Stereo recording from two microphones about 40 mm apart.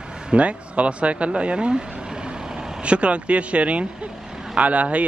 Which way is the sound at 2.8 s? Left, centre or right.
Right.